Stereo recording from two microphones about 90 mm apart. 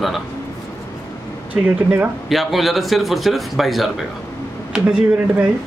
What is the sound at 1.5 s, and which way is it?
Speech, 20° right (ahead or behind).